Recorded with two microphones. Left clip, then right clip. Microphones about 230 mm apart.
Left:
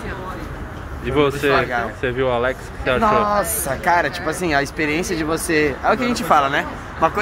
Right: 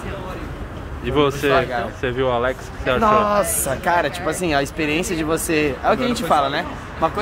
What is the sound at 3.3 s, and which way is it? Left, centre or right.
A woman's voice, centre.